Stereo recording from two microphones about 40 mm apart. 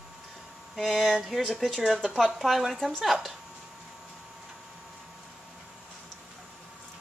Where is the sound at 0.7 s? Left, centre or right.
Centre.